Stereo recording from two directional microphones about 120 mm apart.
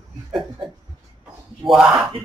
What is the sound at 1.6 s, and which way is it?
Speech, centre (ahead or behind).